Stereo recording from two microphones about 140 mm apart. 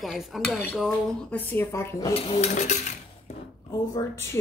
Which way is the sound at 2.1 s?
45° left (ahead or behind).